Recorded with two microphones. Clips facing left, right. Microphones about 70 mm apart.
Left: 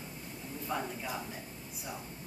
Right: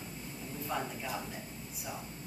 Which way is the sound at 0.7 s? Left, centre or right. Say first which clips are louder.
Even; centre.